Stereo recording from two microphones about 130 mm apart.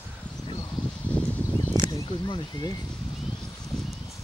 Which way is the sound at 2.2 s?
40° left (ahead or behind).